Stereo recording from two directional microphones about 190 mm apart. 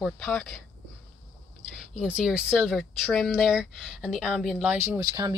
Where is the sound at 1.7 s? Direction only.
5° right (ahead or behind).